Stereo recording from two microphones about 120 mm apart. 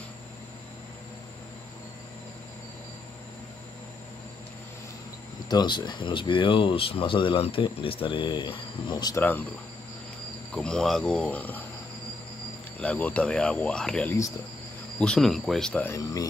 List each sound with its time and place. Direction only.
5.5 s speech: 40° left (ahead or behind)
10.5 s speech: 5° left (ahead or behind)
12.8 s speech: 10° left (ahead or behind)
15.8 s speech: 25° left (ahead or behind)